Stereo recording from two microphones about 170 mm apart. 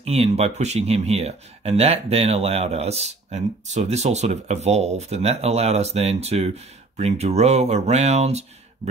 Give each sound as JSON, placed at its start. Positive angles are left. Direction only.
{"t": 0.0, "sound": "speech", "side_deg": -35}